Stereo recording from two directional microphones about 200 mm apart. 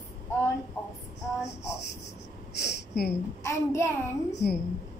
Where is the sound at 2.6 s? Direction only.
55° left (ahead or behind).